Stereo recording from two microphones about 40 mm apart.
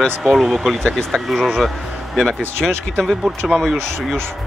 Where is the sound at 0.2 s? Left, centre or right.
Centre.